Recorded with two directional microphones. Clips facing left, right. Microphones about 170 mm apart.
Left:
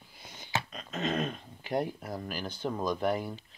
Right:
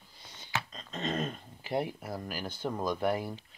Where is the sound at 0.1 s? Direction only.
10° left (ahead or behind).